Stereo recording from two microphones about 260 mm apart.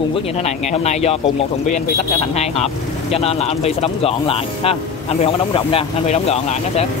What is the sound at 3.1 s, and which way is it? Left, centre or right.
Speech, left.